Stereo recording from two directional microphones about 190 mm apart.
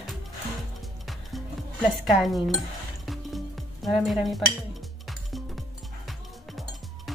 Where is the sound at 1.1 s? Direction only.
Centre (ahead or behind).